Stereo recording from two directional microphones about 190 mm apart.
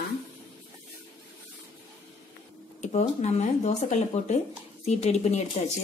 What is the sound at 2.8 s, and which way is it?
A woman's voice, 35° left (ahead or behind).